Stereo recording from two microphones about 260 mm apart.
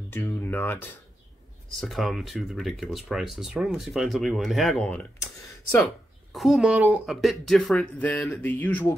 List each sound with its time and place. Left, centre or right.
0.1 s speech: centre